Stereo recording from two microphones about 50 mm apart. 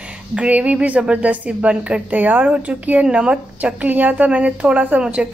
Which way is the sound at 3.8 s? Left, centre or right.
Right.